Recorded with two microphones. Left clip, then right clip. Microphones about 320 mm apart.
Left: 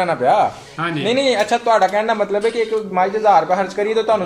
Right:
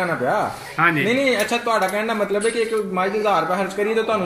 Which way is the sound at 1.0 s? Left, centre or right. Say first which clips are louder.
Left 2 dB; left.